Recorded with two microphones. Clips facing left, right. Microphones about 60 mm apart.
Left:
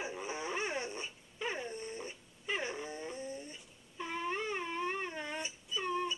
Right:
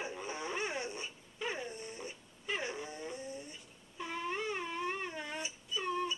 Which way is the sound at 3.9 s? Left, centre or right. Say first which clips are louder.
Left 1 dB; centre.